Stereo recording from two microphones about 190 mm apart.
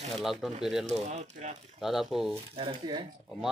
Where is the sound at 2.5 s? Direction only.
25° right (ahead or behind).